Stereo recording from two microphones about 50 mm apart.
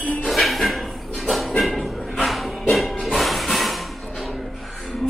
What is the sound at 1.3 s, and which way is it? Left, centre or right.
Dog, centre.